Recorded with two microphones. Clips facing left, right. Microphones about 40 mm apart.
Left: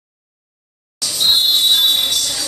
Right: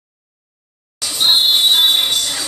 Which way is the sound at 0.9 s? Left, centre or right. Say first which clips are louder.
Right 1 dB; centre.